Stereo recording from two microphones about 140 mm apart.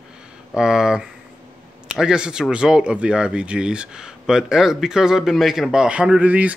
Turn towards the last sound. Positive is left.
turn(degrees=-10)  # may be behind; listen again after turning